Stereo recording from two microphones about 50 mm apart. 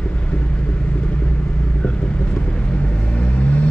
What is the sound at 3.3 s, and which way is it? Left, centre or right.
Vehicle, left.